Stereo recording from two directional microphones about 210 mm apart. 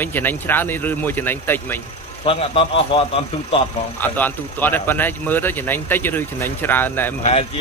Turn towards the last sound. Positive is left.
turn(degrees=10)  # may be behind; listen again after turning